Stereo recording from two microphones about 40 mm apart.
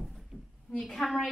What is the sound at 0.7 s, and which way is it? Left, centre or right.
Speech, centre.